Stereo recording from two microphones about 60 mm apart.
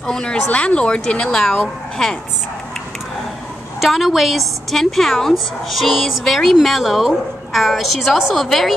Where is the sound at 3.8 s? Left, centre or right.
Centre.